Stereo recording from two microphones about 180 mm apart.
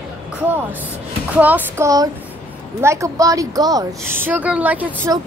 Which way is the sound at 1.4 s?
10° right (ahead or behind).